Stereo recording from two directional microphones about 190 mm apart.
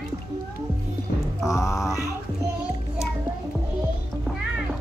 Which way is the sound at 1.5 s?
15° left (ahead or behind).